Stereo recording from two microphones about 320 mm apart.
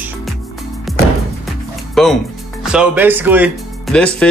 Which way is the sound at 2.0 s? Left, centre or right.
Centre.